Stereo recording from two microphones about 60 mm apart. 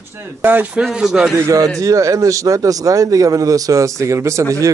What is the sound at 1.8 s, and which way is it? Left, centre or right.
Speech, right.